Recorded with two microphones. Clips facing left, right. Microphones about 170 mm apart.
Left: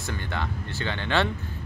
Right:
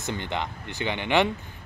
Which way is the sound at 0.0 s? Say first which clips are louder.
Right 2 dB; 20° right (ahead or behind).